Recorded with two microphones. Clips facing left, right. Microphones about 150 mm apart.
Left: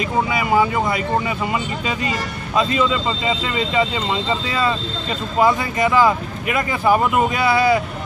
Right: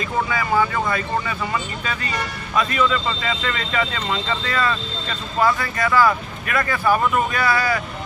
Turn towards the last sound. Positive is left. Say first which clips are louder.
# left 5 dB
turn(degrees=20)  # may be behind; listen again after turning